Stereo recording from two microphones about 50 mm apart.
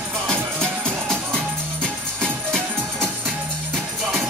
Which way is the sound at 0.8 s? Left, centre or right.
Centre.